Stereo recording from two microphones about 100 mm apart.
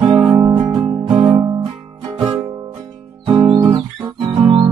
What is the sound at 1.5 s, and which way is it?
Music, 55° right (ahead or behind).